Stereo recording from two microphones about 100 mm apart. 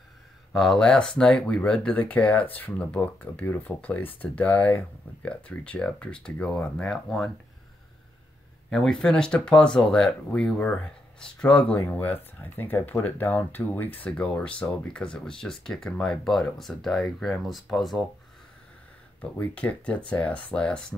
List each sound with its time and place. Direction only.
0.5 s speech: centre (ahead or behind)
8.6 s speech: 5° left (ahead or behind)
19.3 s speech: 15° left (ahead or behind)